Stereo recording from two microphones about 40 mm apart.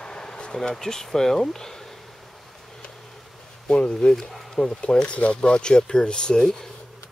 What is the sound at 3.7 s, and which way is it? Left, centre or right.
Speech, left.